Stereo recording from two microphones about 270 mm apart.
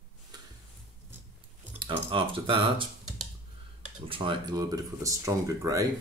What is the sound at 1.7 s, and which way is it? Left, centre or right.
Speech, centre.